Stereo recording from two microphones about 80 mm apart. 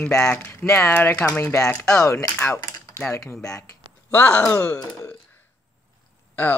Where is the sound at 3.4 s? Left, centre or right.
Centre.